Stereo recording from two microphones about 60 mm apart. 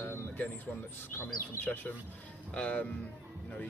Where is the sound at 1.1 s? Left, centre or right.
Left.